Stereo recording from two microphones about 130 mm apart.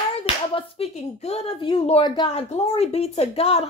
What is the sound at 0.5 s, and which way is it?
A woman's voice, 50° left (ahead or behind).